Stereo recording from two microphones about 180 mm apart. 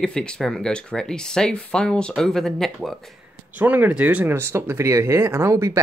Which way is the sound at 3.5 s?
10° right (ahead or behind).